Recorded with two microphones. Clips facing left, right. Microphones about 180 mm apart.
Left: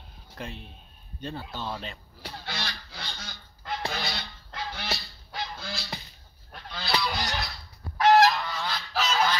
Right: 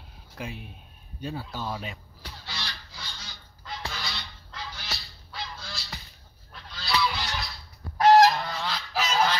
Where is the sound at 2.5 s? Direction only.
55° left (ahead or behind).